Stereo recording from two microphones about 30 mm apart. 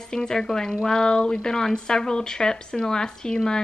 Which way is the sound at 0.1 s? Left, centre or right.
Left.